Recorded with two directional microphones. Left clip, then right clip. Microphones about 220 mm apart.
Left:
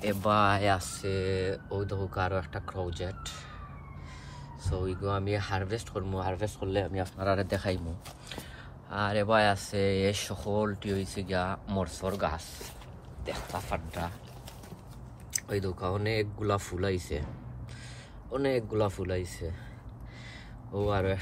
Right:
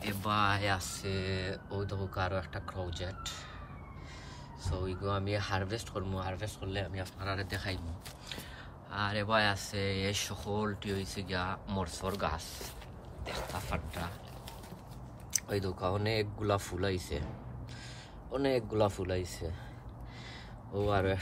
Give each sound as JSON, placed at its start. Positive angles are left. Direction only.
{"t": 0.0, "sound": "speech", "side_deg": 0}
{"t": 4.6, "sound": "speech", "side_deg": -5}
{"t": 8.9, "sound": "speech", "side_deg": 0}
{"t": 15.3, "sound": "speech", "side_deg": -10}
{"t": 18.3, "sound": "speech", "side_deg": -15}
{"t": 20.8, "sound": "speech", "side_deg": -10}